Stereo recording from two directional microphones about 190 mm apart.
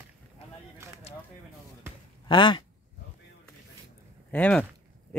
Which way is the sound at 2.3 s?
25° left (ahead or behind).